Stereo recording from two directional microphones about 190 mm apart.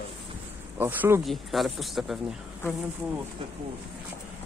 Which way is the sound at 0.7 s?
10° right (ahead or behind).